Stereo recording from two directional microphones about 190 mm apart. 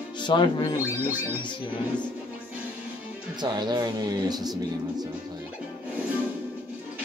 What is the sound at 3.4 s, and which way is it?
Speech, 20° right (ahead or behind).